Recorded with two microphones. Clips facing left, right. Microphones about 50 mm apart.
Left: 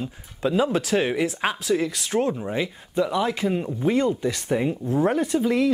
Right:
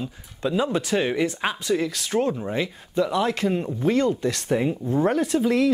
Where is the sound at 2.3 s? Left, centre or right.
Centre.